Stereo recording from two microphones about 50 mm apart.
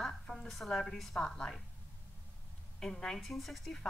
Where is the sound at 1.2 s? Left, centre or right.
Centre.